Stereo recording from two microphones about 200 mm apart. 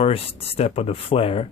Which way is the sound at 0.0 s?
30° left (ahead or behind).